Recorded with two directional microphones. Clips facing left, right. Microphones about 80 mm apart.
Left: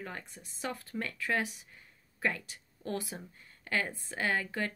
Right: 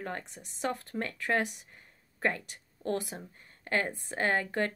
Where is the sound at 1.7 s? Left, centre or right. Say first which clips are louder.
Right 1 dB; right.